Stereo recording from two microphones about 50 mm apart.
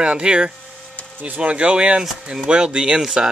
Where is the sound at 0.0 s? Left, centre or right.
Right.